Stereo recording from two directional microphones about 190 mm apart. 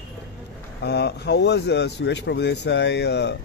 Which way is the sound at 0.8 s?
60° left (ahead or behind).